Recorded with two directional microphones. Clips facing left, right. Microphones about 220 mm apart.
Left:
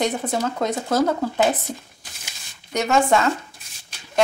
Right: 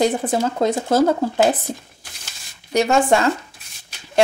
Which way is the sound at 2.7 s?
30° right (ahead or behind).